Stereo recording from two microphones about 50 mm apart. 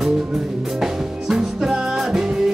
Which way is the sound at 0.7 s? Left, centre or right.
Centre.